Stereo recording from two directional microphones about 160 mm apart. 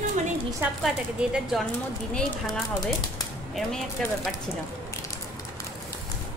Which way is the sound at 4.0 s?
5° left (ahead or behind).